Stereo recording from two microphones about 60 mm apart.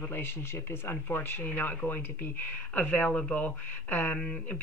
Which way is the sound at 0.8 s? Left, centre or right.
Left.